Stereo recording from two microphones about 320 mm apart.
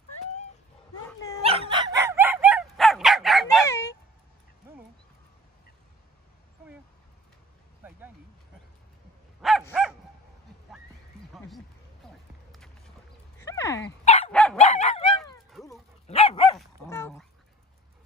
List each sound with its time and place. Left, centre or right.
1.0 s dog: centre
1.4 s dog: centre
7.8 s a sound: centre
9.4 s dog: centre
11.3 s a sound: centre
13.4 s a sound: centre
14.0 s dog: centre
14.3 s dog: centre
14.6 s dog: centre
15.6 s dog: centre
16.1 s dog: centre
16.5 s dog: centre